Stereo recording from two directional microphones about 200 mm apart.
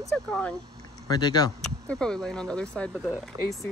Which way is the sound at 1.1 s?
20° left (ahead or behind).